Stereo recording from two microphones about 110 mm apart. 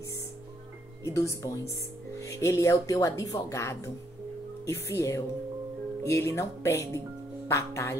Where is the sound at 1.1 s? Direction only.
30° left (ahead or behind).